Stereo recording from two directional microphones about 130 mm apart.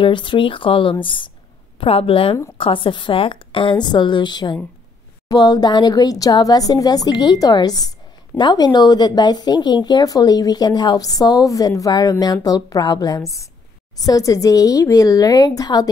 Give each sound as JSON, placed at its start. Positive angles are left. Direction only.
{"t": 0.0, "sound": "a woman's voice", "side_deg": 40}